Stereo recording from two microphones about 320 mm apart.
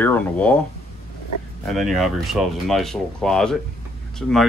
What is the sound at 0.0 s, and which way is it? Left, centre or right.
Speech, centre.